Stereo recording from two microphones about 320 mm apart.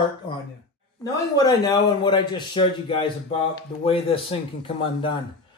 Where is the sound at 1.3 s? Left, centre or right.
Centre.